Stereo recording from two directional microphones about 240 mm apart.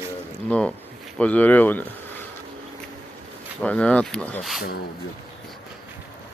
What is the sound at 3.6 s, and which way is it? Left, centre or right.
Speech, centre.